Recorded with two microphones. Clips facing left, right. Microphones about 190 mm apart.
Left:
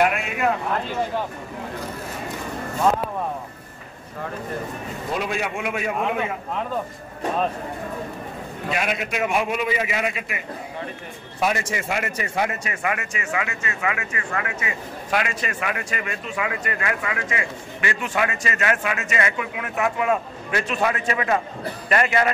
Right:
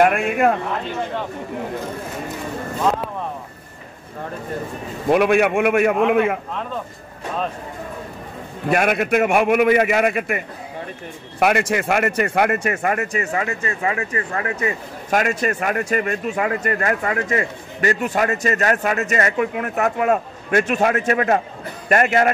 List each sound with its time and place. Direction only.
0.0 s speech: 50° right (ahead or behind)
5.1 s a man's voice: 65° right (ahead or behind)
8.6 s a man's voice: 55° right (ahead or behind)
11.3 s speech: 65° right (ahead or behind)